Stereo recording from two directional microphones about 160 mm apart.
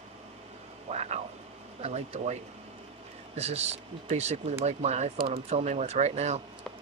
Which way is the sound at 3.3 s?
45° right (ahead or behind).